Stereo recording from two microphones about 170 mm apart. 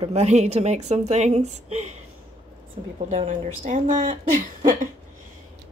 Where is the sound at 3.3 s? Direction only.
50° right (ahead or behind).